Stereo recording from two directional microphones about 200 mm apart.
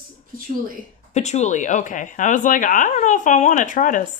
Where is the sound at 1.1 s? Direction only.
35° left (ahead or behind).